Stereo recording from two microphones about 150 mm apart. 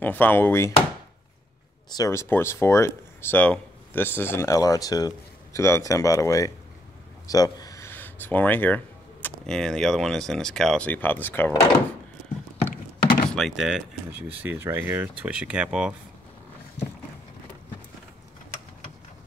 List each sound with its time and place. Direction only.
0.0 s speech: 15° left (ahead or behind)
2.0 s speech: 20° left (ahead or behind)
13.0 s door: 70° left (ahead or behind)
13.3 s speech: centre (ahead or behind)
14.4 s speech: 15° right (ahead or behind)